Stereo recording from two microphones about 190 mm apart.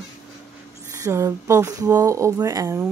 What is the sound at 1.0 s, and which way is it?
Speech, 15° right (ahead or behind).